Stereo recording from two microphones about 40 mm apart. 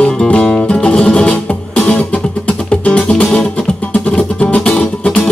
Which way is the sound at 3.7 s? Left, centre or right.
Left.